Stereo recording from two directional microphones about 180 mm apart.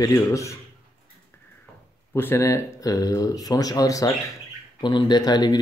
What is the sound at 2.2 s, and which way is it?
Speech, 15° left (ahead or behind).